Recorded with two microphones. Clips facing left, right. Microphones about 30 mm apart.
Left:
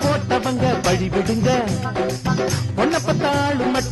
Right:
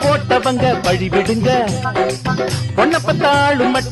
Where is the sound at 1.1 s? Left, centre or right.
Right.